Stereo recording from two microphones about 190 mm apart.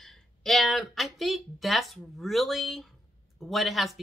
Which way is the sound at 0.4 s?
Centre (ahead or behind).